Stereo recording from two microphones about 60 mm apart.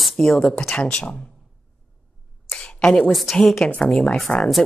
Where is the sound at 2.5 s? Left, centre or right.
Centre.